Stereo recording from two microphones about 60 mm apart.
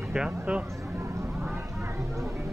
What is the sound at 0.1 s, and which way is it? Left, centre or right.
Speech, centre.